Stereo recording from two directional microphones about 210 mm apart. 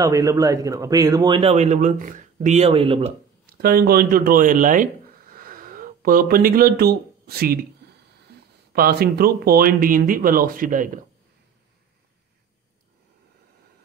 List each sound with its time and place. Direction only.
0.0 s a man's voice: 15° right (ahead or behind)
3.4 s speech: 45° right (ahead or behind)
8.7 s speech: 45° right (ahead or behind)